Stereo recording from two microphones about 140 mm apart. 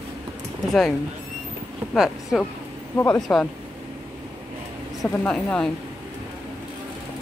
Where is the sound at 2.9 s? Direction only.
15° left (ahead or behind).